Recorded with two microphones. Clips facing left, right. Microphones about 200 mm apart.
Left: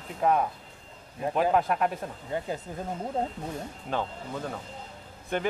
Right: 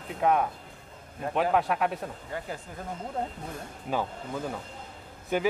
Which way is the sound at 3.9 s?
5° right (ahead or behind).